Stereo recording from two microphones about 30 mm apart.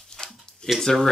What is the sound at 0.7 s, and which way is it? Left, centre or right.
Speech, centre.